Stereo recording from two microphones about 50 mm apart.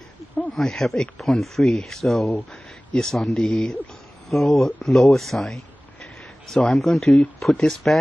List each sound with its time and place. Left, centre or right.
0.3 s snake: left
0.6 s speech: centre